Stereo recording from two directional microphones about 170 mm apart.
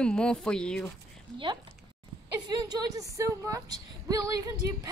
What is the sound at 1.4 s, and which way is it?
A woman's voice, 25° right (ahead or behind).